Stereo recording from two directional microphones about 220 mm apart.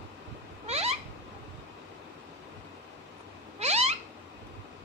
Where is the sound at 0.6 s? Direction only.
30° right (ahead or behind).